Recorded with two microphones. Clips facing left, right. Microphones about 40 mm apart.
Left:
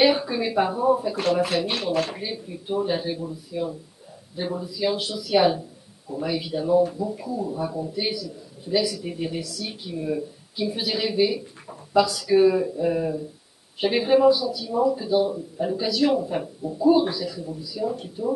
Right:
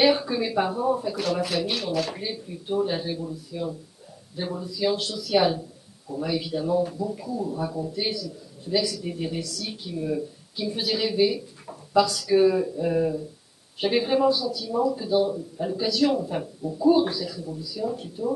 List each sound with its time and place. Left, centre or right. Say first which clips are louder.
0.0 s speech: left 1 dB; centre
1.3 s speech: left 3 dB; left
2.1 s speech: left 1 dB; centre